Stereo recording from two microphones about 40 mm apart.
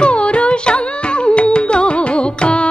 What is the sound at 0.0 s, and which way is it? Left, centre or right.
Music, left.